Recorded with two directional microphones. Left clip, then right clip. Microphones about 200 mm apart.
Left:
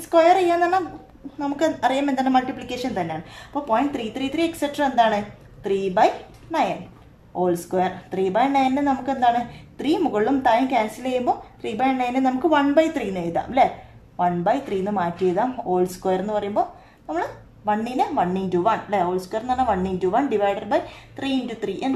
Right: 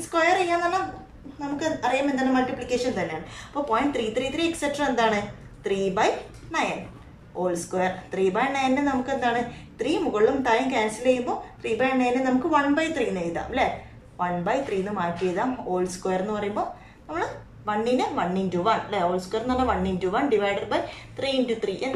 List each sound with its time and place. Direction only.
0.1 s a woman's voice: 45° left (ahead or behind)
7.7 s a woman's voice: 40° left (ahead or behind)